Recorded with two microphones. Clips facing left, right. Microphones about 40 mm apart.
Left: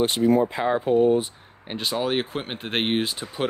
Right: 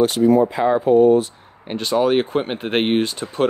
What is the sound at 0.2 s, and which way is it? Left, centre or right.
Speech, centre.